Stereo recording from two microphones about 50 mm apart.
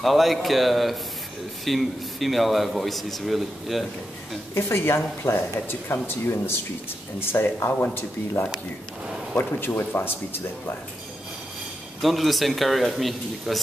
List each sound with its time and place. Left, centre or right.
0.0 s a man's voice: centre
4.6 s speech: left
9.6 s speech: left
12.0 s a man's voice: centre